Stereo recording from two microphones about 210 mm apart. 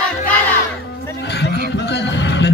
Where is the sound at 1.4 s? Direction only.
55° left (ahead or behind).